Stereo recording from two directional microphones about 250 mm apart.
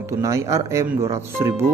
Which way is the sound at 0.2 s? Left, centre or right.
Centre.